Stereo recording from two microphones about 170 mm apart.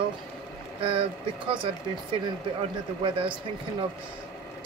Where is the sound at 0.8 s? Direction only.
30° right (ahead or behind).